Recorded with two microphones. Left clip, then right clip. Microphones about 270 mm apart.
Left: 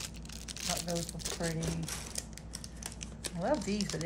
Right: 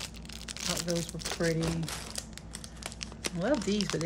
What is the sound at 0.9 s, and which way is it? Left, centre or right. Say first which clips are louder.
Speech: right 4 dB; right.